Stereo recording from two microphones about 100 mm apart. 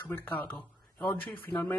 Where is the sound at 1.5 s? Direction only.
25° left (ahead or behind).